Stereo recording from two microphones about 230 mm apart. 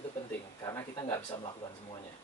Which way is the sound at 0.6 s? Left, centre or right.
Centre.